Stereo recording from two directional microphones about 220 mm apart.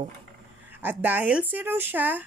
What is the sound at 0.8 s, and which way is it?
Speech, 10° right (ahead or behind).